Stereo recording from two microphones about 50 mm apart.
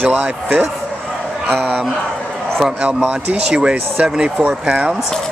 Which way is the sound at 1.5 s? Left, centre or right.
Right.